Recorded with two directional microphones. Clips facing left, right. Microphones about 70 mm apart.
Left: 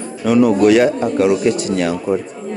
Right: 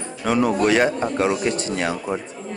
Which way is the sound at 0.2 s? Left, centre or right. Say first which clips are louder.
Left 7 dB; right.